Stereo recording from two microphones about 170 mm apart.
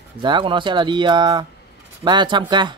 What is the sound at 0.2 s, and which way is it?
Speech, 30° right (ahead or behind).